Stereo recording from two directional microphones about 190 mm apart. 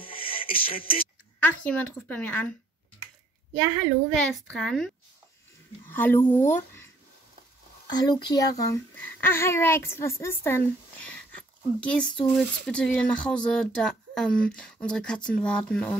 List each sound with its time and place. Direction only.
0.0 s music: 30° left (ahead or behind)
1.4 s a child's voice: 10° left (ahead or behind)
4.1 s a child's voice: centre (ahead or behind)
7.9 s a child's voice: 20° left (ahead or behind)